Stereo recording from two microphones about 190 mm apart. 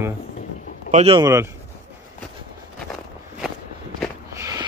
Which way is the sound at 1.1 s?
20° right (ahead or behind).